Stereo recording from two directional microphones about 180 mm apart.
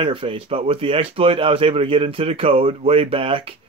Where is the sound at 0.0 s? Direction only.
30° right (ahead or behind).